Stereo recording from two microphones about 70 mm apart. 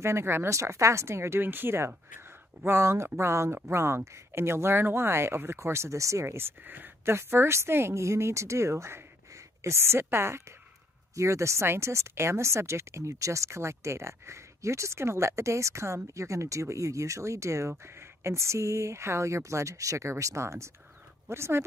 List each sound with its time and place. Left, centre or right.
0.0 s speech: right